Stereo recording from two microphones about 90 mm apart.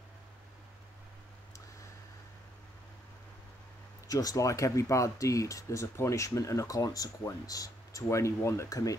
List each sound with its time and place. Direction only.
4.1 s speech: 40° left (ahead or behind)